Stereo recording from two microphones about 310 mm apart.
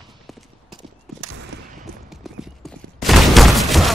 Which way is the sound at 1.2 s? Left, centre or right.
Right.